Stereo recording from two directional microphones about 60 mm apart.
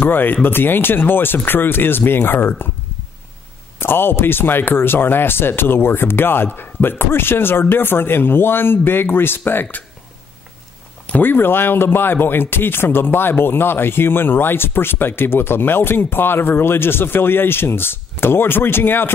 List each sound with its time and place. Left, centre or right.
0.0 s speech: left
3.8 s speech: left
11.1 s speech: left